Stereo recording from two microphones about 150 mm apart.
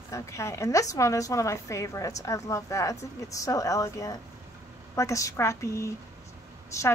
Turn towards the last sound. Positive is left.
turn(degrees=20)  # may be behind; listen again after turning